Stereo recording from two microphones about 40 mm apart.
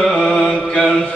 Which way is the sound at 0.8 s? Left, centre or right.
Centre.